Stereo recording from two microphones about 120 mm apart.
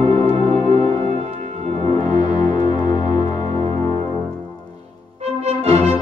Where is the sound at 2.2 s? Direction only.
35° left (ahead or behind).